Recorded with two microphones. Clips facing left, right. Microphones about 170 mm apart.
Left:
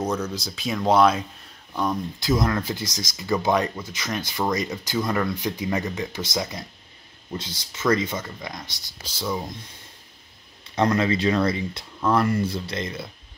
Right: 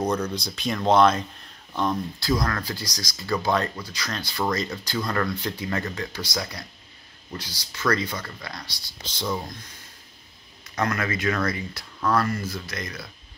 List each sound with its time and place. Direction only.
0.0 s speech: 5° left (ahead or behind)
2.1 s speech: 20° left (ahead or behind)
9.0 s speech: 10° left (ahead or behind)
10.8 s speech: 25° left (ahead or behind)